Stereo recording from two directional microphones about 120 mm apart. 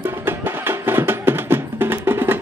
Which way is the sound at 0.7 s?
20° right (ahead or behind).